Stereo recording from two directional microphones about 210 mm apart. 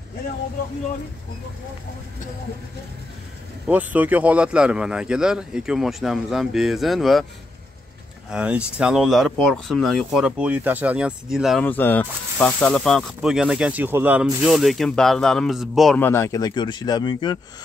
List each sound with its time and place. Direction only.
3.6 s speech: 5° right (ahead or behind)
8.3 s speech: 5° right (ahead or behind)
16.0 s speech: 10° left (ahead or behind)